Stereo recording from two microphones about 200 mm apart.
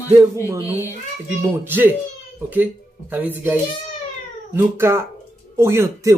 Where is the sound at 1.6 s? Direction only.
10° right (ahead or behind).